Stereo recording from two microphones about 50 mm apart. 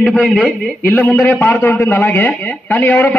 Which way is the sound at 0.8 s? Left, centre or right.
Left.